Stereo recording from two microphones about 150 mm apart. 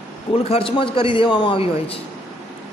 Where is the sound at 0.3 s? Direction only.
40° left (ahead or behind).